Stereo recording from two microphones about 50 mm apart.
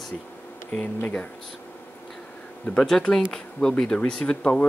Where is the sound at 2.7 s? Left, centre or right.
Centre.